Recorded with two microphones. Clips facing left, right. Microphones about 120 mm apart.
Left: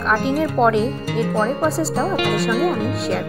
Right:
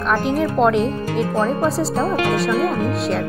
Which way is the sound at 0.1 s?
Centre (ahead or behind).